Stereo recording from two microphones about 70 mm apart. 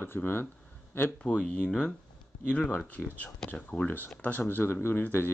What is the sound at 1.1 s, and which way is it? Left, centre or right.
Speech, centre.